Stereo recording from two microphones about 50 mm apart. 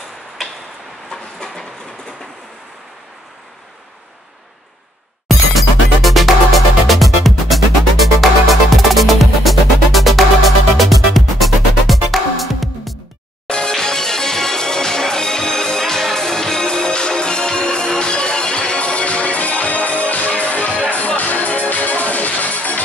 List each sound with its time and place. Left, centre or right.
1.1 s train: centre
5.5 s music: centre
13.5 s music: centre